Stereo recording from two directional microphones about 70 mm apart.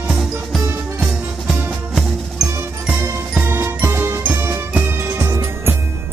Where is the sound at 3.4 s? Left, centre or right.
Right.